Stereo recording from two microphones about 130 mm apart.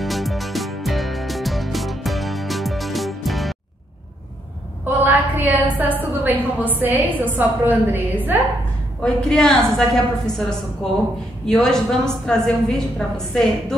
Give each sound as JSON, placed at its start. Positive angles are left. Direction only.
{"t": 0.0, "sound": "music", "side_deg": 0}
{"t": 4.8, "sound": "a woman's voice", "side_deg": -15}
{"t": 9.0, "sound": "a woman's voice", "side_deg": 5}